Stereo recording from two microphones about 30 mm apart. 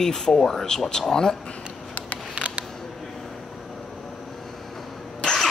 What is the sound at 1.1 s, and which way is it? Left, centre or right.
Speech, left.